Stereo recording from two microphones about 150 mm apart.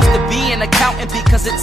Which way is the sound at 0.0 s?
Centre (ahead or behind).